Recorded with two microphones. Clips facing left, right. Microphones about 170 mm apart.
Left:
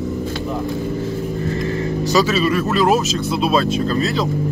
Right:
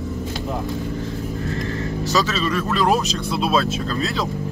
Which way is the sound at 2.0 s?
10° left (ahead or behind).